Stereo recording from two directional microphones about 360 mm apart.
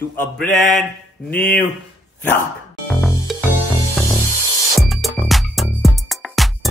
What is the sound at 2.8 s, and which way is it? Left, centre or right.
Music, centre.